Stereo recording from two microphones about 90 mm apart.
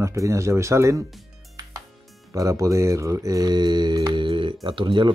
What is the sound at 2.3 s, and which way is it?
Speech, 40° right (ahead or behind).